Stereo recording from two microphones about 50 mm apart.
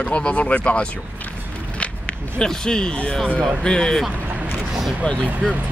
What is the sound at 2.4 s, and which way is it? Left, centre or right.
A man's voice, centre.